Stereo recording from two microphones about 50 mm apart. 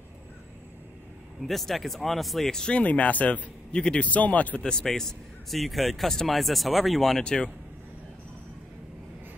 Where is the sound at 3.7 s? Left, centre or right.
Centre.